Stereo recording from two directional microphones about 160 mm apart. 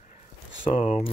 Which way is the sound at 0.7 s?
45° left (ahead or behind).